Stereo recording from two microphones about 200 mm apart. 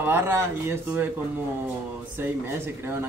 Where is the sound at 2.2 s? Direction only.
10° right (ahead or behind).